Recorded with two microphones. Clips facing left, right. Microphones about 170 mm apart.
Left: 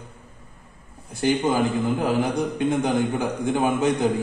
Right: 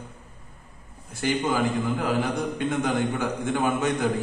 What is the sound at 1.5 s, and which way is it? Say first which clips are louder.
A man's voice: left 3 dB; 25° left (ahead or behind).